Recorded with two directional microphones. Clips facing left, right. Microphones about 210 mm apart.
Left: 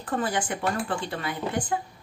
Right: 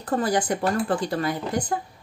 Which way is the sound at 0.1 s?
40° right (ahead or behind).